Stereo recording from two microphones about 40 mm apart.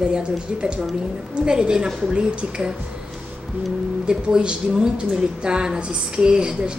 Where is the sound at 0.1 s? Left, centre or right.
Right.